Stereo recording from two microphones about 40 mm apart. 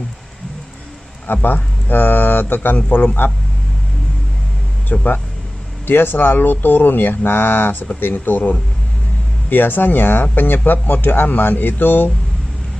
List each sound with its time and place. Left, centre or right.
1.2 s speech: left
4.9 s speech: left
5.9 s speech: left
8.0 s speech: left